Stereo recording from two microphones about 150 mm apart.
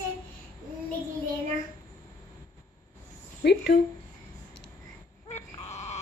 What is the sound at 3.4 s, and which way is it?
Speech, 90° left.